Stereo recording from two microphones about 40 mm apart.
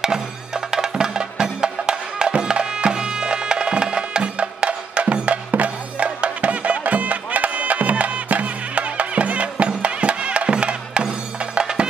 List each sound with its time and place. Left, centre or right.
0.7 s music: centre